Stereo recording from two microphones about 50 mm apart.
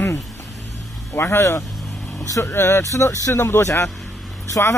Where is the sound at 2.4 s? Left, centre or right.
Left.